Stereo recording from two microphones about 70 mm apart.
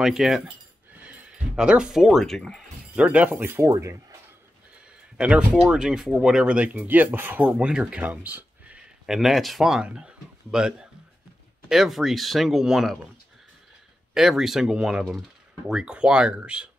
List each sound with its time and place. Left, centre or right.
0.0 s speech: centre
1.0 s music: centre
3.0 s speech: centre
3.6 s speech: right
5.1 s speech: centre
5.7 s speech: centre
9.0 s speech: centre
11.7 s speech: centre
14.1 s speech: centre